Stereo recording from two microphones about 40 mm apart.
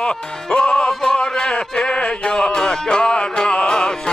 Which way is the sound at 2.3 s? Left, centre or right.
Left.